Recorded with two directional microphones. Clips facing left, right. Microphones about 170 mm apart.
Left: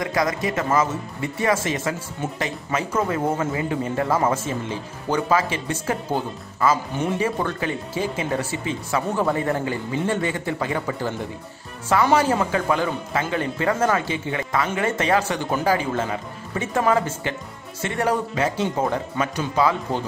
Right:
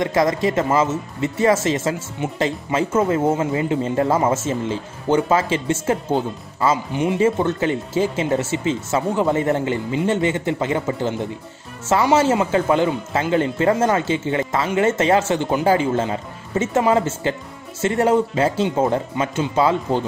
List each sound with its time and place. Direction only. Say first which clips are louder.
0.0 s speech: right 5 dB; 25° right (ahead or behind)